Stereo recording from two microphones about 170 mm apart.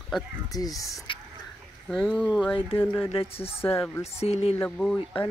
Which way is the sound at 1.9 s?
Centre (ahead or behind).